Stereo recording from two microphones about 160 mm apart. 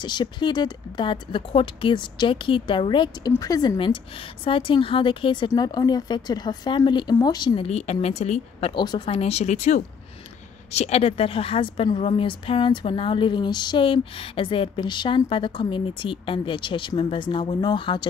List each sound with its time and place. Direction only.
0.0 s speech: 30° left (ahead or behind)